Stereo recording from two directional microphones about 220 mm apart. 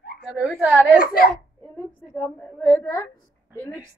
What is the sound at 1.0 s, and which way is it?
Speech, 45° left (ahead or behind).